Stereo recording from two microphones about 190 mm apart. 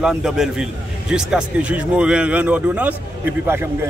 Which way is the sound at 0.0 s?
Centre (ahead or behind).